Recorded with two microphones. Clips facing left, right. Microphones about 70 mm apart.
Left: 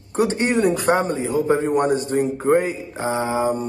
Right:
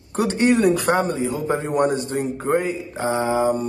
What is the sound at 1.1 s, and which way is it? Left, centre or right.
Speech, left.